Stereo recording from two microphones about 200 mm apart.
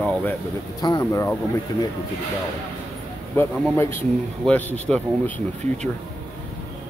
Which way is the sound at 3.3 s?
10° left (ahead or behind).